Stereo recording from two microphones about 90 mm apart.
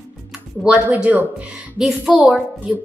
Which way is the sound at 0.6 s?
10° right (ahead or behind).